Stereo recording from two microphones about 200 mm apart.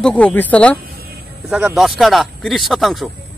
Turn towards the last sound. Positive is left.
turn(degrees=0)  # may be behind; listen again after turning